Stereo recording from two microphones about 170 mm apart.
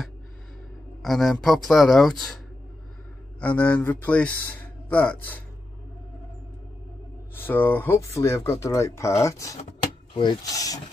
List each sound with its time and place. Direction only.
1.0 s speech: centre (ahead or behind)
3.3 s speech: 10° left (ahead or behind)
7.3 s speech: 10° left (ahead or behind)